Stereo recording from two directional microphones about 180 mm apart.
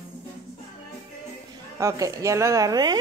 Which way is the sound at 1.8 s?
15° right (ahead or behind).